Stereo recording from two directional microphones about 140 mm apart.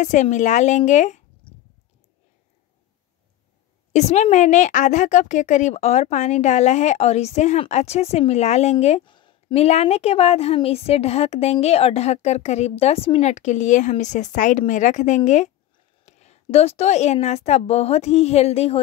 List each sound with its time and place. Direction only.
0.0 s speech: 60° left (ahead or behind)
1.4 s a sound: 40° left (ahead or behind)
3.9 s a woman's voice: 55° left (ahead or behind)
9.0 s a woman's voice: 35° left (ahead or behind)